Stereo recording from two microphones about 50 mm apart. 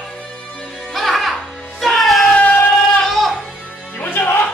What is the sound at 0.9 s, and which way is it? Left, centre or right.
Music, centre.